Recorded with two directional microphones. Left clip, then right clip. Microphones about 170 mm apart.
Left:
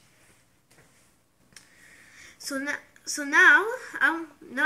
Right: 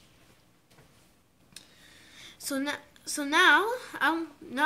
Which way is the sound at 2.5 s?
50° right (ahead or behind).